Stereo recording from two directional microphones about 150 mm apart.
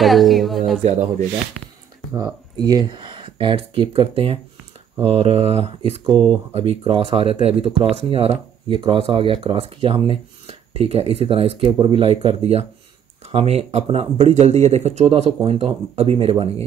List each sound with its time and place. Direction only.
0.0 s speech: centre (ahead or behind)
2.1 s speech: 25° right (ahead or behind)